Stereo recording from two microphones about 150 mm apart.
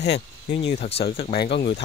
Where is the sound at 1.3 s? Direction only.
85° left.